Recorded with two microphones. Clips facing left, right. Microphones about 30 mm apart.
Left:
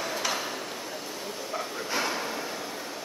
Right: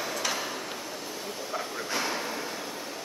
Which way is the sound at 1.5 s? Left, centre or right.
Centre.